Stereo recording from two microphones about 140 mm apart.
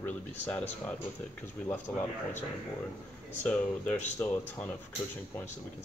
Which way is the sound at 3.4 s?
10° left (ahead or behind).